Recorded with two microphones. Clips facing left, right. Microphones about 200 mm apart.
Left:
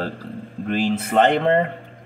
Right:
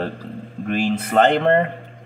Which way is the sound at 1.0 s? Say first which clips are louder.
Right 1 dB; 5° left (ahead or behind).